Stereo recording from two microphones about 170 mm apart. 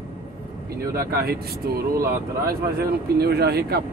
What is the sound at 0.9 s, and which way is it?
Speech, 65° right (ahead or behind).